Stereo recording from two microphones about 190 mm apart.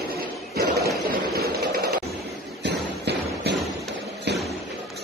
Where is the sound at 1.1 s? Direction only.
55° right (ahead or behind).